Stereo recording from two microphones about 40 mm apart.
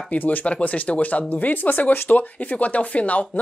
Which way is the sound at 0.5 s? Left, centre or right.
Left.